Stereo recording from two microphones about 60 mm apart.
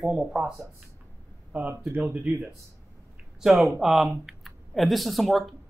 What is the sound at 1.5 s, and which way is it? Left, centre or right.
Speech, right.